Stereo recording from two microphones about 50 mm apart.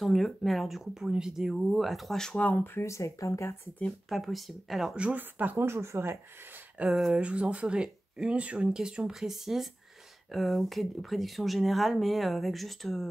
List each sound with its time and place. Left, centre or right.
0.0 s speech: centre
2.5 s speech: left
2.8 s speech: left
4.1 s speech: centre
5.1 s speech: right
5.6 s speech: right
6.9 s speech: centre
7.2 s speech: right; by 13.1 s centre